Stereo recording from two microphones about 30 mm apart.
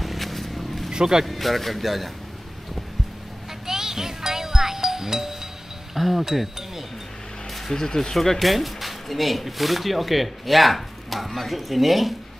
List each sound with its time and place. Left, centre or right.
0.0 s vehicle: centre
0.9 s speech: centre
1.2 s speech: centre
3.6 s music: centre
5.9 s speech: centre
7.7 s speech: centre
8.2 s speech: centre